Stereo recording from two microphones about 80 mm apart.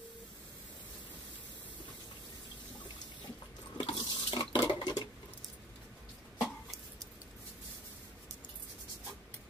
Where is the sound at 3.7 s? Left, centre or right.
Left.